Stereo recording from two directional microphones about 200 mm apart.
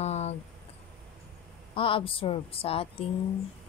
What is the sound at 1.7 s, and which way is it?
A woman's voice, 25° left (ahead or behind).